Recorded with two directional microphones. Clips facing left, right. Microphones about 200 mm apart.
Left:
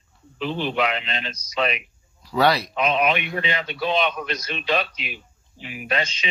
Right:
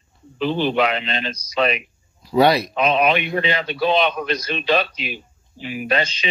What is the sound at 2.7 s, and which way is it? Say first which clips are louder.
A man's voice: right 3 dB; 35° right (ahead or behind).